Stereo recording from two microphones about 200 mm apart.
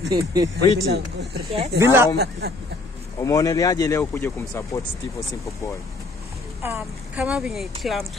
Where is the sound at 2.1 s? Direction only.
55° right (ahead or behind).